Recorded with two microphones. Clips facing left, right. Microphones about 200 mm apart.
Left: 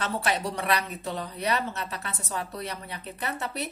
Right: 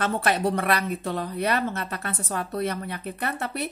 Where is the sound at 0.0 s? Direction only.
55° right (ahead or behind).